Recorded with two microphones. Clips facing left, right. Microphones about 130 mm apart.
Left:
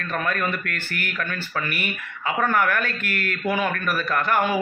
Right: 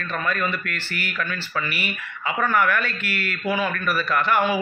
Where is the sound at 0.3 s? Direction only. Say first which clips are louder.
Even; 55° left (ahead or behind).